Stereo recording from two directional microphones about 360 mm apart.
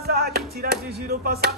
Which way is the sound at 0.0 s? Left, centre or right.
Right.